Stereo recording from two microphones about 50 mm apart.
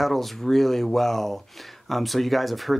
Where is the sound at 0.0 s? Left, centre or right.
Centre.